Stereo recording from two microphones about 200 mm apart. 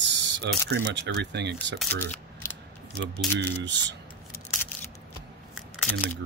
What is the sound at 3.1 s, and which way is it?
Speech, 60° right (ahead or behind).